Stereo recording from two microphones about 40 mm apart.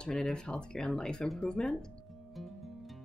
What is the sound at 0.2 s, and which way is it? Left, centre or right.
A woman's voice, centre.